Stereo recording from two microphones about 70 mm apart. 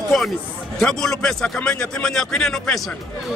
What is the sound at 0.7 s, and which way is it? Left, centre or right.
A man's voice, centre.